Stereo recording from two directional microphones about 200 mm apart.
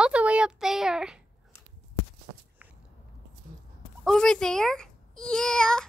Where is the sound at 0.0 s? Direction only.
5° right (ahead or behind).